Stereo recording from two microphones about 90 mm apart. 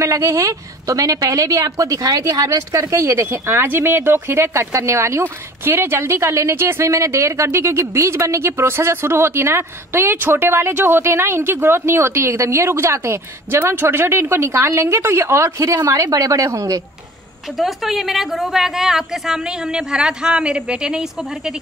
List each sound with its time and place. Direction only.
0.0 s a woman's voice: 35° right (ahead or behind)
17.6 s a woman's voice: centre (ahead or behind)